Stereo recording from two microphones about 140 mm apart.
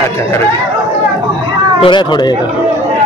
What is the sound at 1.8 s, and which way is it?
Speech, 35° left (ahead or behind).